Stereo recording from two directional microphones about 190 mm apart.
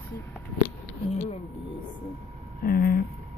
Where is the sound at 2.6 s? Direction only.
50° left (ahead or behind).